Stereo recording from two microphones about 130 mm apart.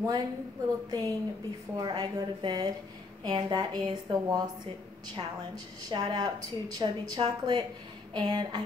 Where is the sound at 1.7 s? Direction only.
35° right (ahead or behind).